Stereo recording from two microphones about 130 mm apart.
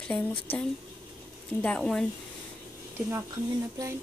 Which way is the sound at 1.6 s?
5° left (ahead or behind).